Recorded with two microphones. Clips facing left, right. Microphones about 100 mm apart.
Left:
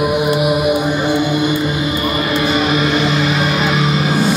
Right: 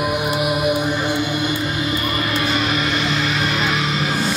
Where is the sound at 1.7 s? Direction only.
10° left (ahead or behind).